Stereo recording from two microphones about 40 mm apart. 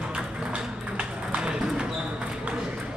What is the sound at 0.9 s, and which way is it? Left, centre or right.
Music, right.